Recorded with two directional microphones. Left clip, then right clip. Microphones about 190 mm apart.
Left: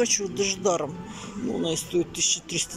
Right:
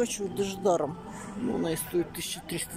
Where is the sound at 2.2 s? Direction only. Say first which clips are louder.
Left 9 dB; 45° right (ahead or behind).